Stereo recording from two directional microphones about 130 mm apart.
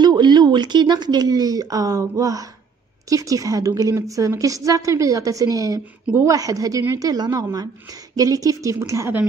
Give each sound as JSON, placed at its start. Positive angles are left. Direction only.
{"t": 0.0, "sound": "a woman's voice", "side_deg": -35}